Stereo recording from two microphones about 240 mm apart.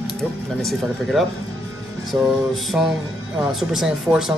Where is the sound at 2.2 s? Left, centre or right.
Centre.